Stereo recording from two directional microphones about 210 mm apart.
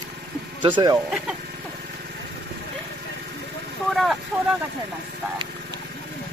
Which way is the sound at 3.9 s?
Centre (ahead or behind).